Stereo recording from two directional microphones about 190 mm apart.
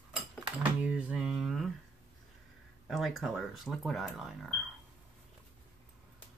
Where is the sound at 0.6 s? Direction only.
5° right (ahead or behind).